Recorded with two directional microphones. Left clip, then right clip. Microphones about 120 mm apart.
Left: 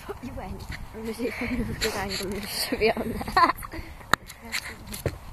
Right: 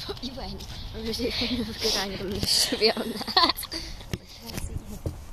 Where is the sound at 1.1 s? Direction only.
35° left (ahead or behind).